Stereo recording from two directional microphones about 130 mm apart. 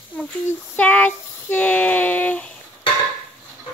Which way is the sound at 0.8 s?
10° left (ahead or behind).